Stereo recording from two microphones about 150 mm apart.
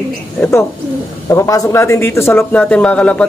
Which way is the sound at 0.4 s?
15° left (ahead or behind).